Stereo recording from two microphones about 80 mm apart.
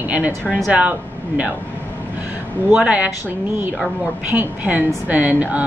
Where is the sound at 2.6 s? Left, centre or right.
Centre.